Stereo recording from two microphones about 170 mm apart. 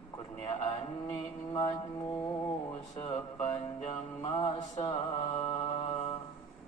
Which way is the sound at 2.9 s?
35° left (ahead or behind).